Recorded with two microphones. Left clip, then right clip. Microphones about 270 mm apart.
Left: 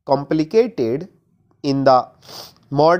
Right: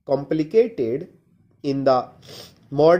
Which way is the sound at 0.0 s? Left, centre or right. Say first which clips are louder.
Left 4 dB; left.